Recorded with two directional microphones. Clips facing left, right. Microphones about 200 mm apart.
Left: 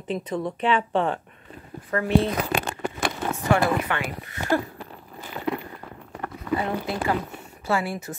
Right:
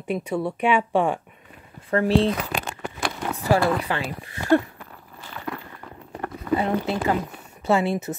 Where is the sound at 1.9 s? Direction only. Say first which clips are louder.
Right 2 dB; 30° right (ahead or behind).